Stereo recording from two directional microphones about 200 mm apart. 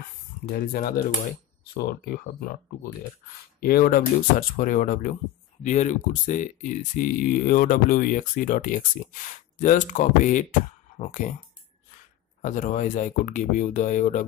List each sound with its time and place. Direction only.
0.5 s speech: 45° left (ahead or behind)
3.6 s speech: 45° left (ahead or behind)
12.4 s speech: 40° left (ahead or behind)